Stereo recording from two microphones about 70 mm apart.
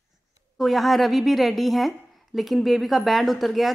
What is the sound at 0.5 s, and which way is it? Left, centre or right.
A woman's voice, centre.